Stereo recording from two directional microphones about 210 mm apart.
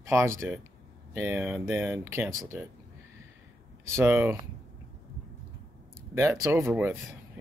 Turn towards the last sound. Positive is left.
turn(degrees=-10)  # may be behind; listen again after turning